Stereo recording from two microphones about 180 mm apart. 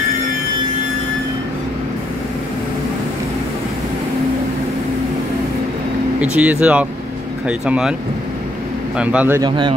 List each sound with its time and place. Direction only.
6.2 s speech: 5° right (ahead or behind)
8.9 s speech: 5° right (ahead or behind)
9.4 s a man's voice: 25° right (ahead or behind)